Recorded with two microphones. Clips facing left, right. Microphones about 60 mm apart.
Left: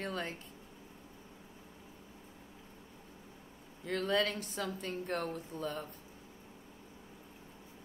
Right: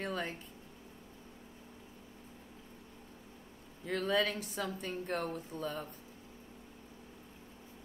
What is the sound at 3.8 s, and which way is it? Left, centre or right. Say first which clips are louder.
Speech: even; centre.